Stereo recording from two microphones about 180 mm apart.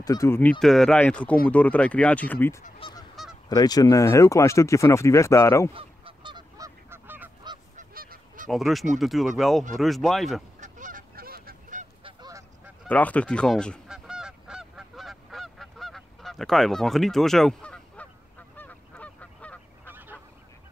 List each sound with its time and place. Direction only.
0.0 s speech: 20° left (ahead or behind)
2.8 s goose: 20° left (ahead or behind)
3.4 s speech: 20° left (ahead or behind)
5.7 s goose: 30° right (ahead or behind)
6.9 s goose: 10° right (ahead or behind)
7.7 s goose: 55° right (ahead or behind)
8.5 s speech: centre (ahead or behind)
10.6 s goose: 45° right (ahead or behind)
12.0 s goose: 20° right (ahead or behind)
12.8 s honk: 10° left (ahead or behind)
19.9 s goose: 10° right (ahead or behind)